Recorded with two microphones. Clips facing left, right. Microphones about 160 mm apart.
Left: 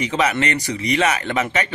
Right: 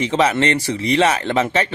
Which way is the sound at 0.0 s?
30° right (ahead or behind).